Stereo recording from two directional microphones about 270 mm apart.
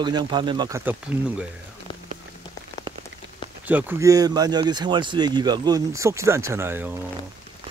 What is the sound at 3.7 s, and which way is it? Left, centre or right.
Speech, centre.